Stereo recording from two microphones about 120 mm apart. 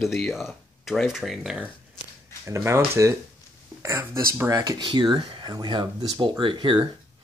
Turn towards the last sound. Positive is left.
turn(degrees=-40)  # may be behind; listen again after turning